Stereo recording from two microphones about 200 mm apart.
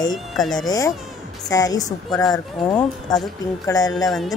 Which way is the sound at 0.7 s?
15° left (ahead or behind).